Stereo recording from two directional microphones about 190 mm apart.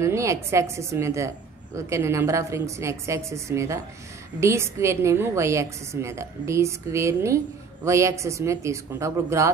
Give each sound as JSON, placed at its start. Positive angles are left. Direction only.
{"t": 0.0, "sound": "a woman's voice", "side_deg": -15}